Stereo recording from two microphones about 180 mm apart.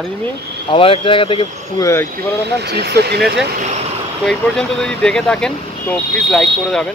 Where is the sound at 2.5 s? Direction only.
65° right (ahead or behind).